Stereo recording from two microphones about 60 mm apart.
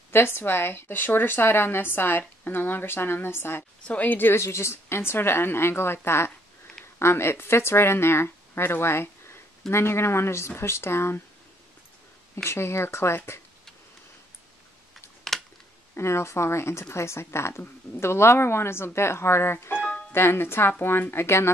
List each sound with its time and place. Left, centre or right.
0.1 s a woman's voice: left
3.8 s a woman's voice: left
4.4 s a woman's voice: left
12.4 s a woman's voice: left
15.3 s typing: centre
16.0 s a woman's voice: left